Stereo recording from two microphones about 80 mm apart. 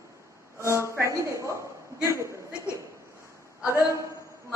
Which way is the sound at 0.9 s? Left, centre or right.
Right.